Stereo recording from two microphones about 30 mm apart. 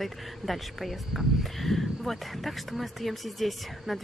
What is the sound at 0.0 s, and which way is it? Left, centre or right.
Speech, centre.